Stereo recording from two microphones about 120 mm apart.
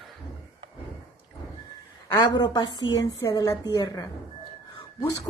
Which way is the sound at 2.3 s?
40° left (ahead or behind).